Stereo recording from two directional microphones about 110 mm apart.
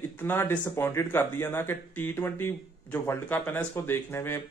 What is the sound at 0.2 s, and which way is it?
Speech, 20° left (ahead or behind).